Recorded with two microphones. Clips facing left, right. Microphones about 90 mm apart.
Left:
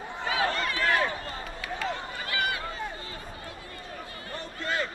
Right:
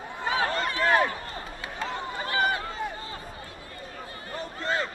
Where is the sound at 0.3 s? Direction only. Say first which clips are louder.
Right 1 dB; 30° right (ahead or behind).